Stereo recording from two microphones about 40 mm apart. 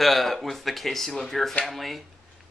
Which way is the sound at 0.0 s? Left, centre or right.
Centre.